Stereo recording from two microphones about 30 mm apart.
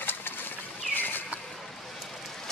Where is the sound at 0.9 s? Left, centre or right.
Left.